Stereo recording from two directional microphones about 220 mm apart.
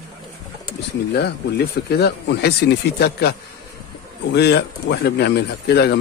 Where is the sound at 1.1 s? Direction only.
45° left (ahead or behind).